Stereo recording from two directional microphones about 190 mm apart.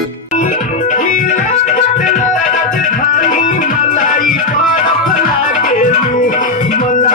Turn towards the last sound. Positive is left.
turn(degrees=45)  # may be behind; listen again after turning